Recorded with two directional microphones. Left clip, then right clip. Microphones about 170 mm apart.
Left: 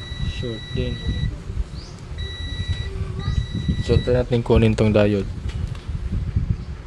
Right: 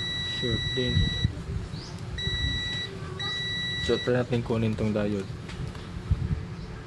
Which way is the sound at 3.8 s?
15° left (ahead or behind).